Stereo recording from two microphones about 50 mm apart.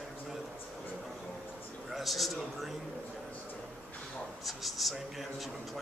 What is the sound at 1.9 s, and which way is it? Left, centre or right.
Speech, centre.